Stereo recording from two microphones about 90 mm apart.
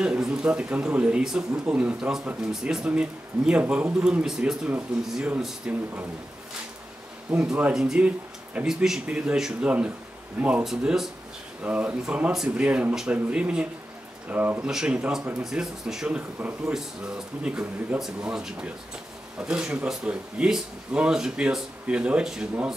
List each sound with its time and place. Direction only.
0.0 s speech: 10° right (ahead or behind)
7.2 s speech: 10° right (ahead or behind)
14.7 s speech: 10° right (ahead or behind)
17.4 s speech: 10° right (ahead or behind)